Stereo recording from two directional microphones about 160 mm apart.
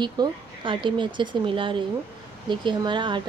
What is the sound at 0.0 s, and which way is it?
A woman's voice, 30° right (ahead or behind).